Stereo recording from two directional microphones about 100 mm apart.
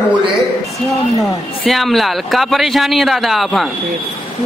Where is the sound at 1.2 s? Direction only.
Centre (ahead or behind).